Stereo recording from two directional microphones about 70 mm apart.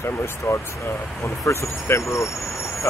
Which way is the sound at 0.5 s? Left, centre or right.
Left.